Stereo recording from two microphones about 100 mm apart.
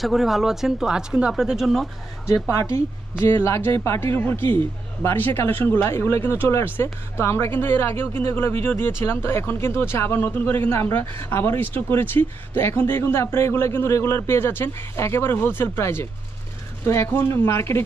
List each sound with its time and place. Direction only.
0.0 s speech: centre (ahead or behind)
2.5 s speech: 25° left (ahead or behind)